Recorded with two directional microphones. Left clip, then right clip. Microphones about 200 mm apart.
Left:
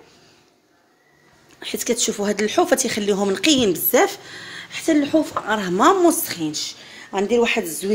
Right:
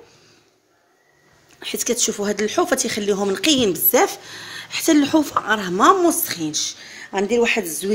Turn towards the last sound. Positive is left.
turn(degrees=-5)  # may be behind; listen again after turning